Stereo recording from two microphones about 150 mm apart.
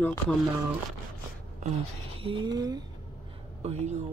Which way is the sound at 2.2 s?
35° right (ahead or behind).